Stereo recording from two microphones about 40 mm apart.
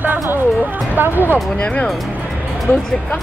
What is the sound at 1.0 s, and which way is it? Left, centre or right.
Speech, right.